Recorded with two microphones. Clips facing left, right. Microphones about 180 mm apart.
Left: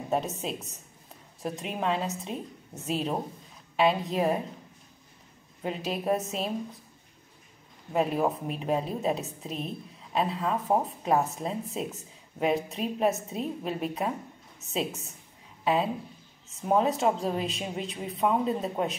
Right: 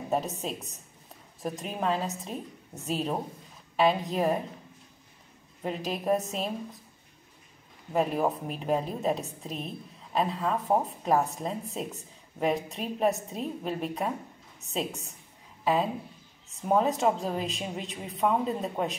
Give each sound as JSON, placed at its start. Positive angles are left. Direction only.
{"t": 0.1, "sound": "a woman's voice", "side_deg": 0}
{"t": 5.6, "sound": "a woman's voice", "side_deg": 0}
{"t": 7.9, "sound": "a woman's voice", "side_deg": 0}